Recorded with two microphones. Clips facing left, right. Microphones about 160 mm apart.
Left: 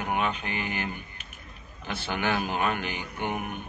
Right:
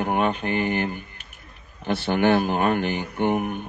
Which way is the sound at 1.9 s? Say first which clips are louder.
Right 9 dB; 40° right (ahead or behind).